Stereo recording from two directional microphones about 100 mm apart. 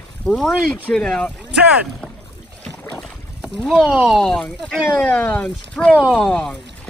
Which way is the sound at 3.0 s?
5° left (ahead or behind).